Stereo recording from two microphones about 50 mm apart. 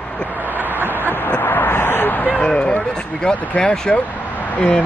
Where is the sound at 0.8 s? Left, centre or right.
Left.